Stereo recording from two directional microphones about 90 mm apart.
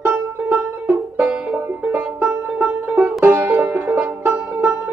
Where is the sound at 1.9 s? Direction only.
20° right (ahead or behind).